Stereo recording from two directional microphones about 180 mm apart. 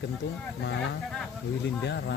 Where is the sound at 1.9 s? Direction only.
70° left (ahead or behind).